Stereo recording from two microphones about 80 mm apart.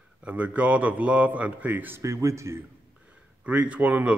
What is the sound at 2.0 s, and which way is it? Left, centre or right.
Speech, right.